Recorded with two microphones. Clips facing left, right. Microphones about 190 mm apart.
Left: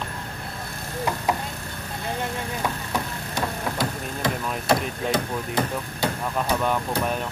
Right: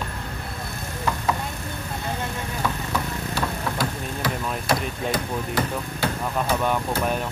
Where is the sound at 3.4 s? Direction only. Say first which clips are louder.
Left 1 dB; 20° left (ahead or behind).